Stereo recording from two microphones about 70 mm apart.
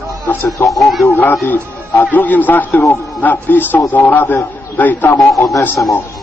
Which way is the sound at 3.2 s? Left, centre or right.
Left.